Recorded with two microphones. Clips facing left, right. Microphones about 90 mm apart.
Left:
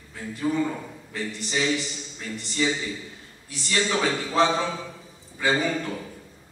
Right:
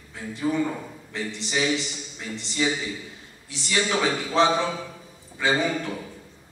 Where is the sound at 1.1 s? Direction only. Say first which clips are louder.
Right 1 dB; 20° right (ahead or behind).